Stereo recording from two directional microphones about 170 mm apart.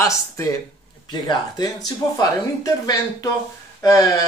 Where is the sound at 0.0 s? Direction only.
20° left (ahead or behind).